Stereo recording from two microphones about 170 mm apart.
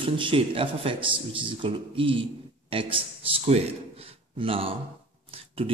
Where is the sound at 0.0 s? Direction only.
30° right (ahead or behind).